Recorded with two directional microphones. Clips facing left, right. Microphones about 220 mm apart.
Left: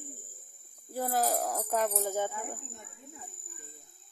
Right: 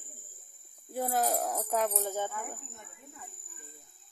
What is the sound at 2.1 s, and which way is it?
Speech, 15° left (ahead or behind).